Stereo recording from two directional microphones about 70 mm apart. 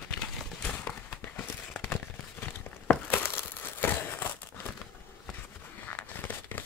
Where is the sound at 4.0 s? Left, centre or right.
Left.